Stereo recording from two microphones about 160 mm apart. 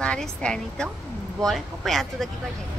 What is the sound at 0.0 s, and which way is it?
A woman's voice, 5° left (ahead or behind).